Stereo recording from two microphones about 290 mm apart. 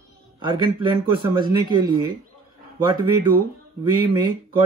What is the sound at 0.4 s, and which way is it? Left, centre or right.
Speech, centre.